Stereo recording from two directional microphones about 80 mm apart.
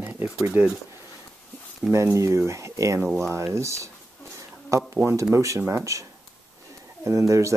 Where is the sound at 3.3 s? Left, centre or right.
Right.